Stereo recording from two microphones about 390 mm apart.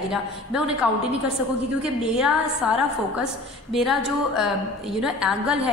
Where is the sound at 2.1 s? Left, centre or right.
Centre.